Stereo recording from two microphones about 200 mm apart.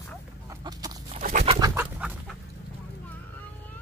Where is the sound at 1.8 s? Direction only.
5° right (ahead or behind).